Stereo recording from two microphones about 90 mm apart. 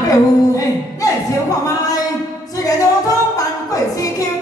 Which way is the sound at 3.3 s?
40° left (ahead or behind).